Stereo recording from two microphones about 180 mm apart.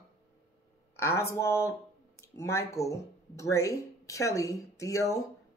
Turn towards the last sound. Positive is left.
turn(degrees=15)  # may be behind; listen again after turning